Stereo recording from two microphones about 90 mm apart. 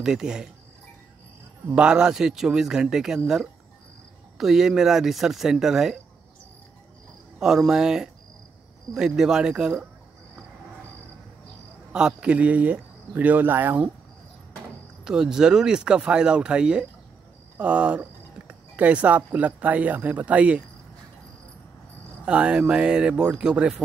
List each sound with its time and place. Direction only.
0.0 s speech: 5° right (ahead or behind)
1.8 s speech: 10° right (ahead or behind)
4.4 s speech: 5° right (ahead or behind)
7.3 s speech: 5° right (ahead or behind)
11.9 s speech: 10° right (ahead or behind)
15.0 s speech: 5° right (ahead or behind)
22.2 s speech: 15° right (ahead or behind)